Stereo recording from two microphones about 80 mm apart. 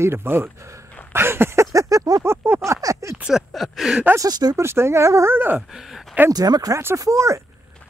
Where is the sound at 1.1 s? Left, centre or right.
Right.